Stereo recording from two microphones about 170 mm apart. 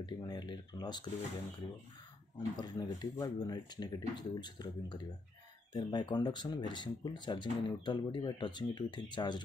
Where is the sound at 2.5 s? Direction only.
25° left (ahead or behind).